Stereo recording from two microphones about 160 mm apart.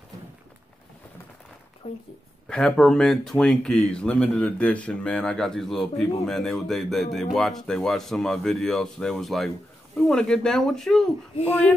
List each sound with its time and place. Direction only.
1.8 s speech: 40° left (ahead or behind)
2.4 s speech: 5° left (ahead or behind)